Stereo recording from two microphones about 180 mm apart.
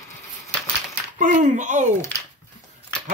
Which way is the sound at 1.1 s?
45° right (ahead or behind).